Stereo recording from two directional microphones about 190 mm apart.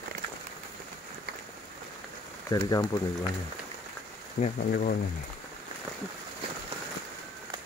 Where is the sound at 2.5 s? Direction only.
20° left (ahead or behind).